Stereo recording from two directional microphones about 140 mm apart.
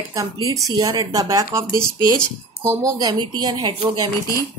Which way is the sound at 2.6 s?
25° right (ahead or behind).